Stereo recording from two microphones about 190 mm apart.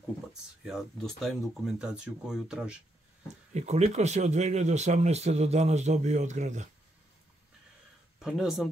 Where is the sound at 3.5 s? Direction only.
35° right (ahead or behind).